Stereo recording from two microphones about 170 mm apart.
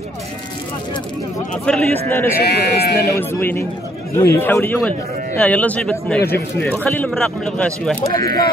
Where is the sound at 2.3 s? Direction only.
70° left (ahead or behind).